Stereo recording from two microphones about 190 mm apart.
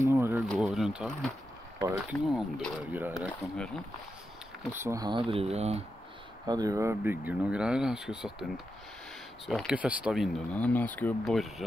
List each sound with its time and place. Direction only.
0.0 s a sound: 15° right (ahead or behind)
0.4 s speech: centre (ahead or behind)
3.5 s speech: 5° left (ahead or behind)
4.7 s speech: 15° right (ahead or behind); by 5.9 s 35° right (ahead or behind)
6.4 s speech: 20° right (ahead or behind); by 8.5 s 5° right (ahead or behind)
9.5 s speech: 5° right (ahead or behind)